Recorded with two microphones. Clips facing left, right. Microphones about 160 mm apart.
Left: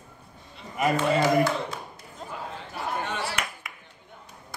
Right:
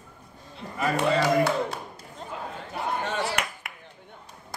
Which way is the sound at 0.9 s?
65° right (ahead or behind).